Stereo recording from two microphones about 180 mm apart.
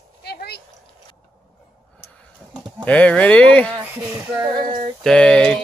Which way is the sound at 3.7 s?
5° right (ahead or behind).